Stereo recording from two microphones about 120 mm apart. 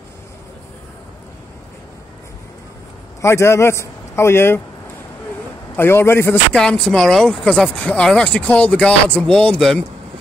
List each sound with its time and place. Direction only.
3.2 s a man's voice: 25° left (ahead or behind)
5.8 s a man's voice: 20° left (ahead or behind)
6.5 s speech: 5° left (ahead or behind)